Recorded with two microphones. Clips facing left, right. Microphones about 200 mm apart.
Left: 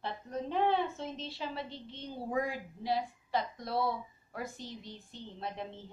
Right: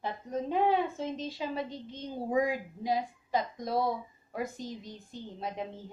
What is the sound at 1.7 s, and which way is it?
Speech, 45° right (ahead or behind).